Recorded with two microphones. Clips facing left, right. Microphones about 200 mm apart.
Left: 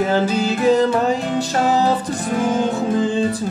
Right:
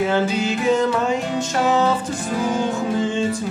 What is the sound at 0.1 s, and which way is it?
Music, 35° left (ahead or behind).